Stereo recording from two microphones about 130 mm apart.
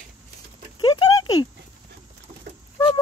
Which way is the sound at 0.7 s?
35° left (ahead or behind).